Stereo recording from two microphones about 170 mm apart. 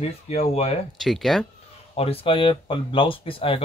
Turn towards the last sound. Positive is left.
turn(degrees=30)  # may be behind; listen again after turning